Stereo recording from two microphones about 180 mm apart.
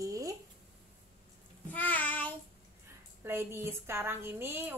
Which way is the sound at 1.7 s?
10° left (ahead or behind).